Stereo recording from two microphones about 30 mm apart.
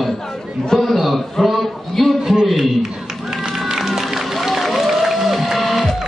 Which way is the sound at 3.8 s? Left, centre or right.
Centre.